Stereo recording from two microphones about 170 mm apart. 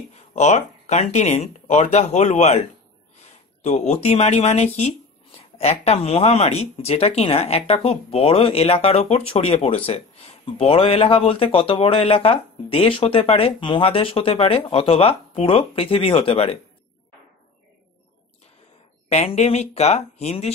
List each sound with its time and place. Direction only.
0.1 s speech: 40° left (ahead or behind)
3.6 s speech: 40° left (ahead or behind)
19.0 s speech: 40° left (ahead or behind)